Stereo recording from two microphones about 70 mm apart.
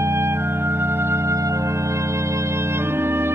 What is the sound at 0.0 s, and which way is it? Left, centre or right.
Organ, right.